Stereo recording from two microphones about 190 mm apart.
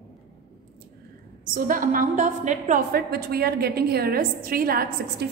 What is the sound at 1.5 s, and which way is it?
A woman's voice, 45° right (ahead or behind).